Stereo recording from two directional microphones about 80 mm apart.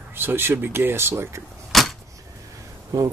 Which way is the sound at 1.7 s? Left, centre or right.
Centre.